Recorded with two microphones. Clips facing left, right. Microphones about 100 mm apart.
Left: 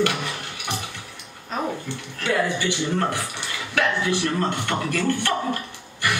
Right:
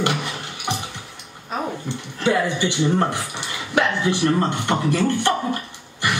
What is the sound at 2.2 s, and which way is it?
A man's voice, 20° right (ahead or behind).